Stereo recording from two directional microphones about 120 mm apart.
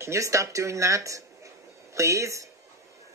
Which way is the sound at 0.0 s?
25° right (ahead or behind).